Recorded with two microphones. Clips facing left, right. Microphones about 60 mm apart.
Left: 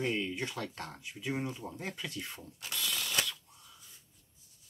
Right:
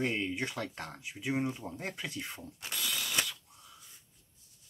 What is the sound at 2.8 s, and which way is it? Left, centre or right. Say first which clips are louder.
Ratchet: even; centre.